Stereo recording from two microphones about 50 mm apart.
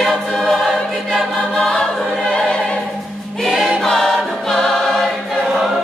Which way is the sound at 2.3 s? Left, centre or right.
Centre.